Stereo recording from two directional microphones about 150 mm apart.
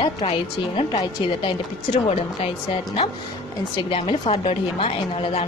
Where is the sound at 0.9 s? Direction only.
40° left (ahead or behind).